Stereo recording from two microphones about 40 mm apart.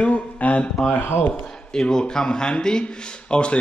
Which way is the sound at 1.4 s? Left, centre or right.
Centre.